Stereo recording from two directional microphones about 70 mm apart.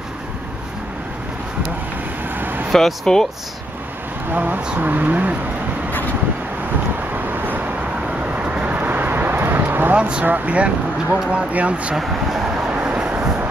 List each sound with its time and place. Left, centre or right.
2.3 s vehicle: right
2.7 s speech: centre
4.3 s speech: right
7.3 s vehicle: right
9.9 s speech: centre
12.0 s a sound: centre
12.5 s vehicle: centre